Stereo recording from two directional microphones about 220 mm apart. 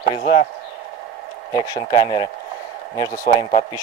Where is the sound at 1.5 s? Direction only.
20° left (ahead or behind).